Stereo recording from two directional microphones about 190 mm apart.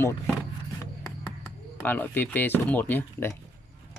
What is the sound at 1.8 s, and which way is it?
Speech, 10° left (ahead or behind).